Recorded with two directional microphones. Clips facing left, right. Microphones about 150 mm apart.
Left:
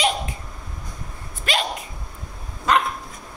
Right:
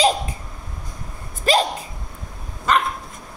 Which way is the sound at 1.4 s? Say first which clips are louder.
Right 7 dB; 35° right (ahead or behind).